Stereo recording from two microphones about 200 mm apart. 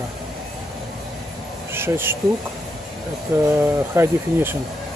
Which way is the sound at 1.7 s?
10° right (ahead or behind).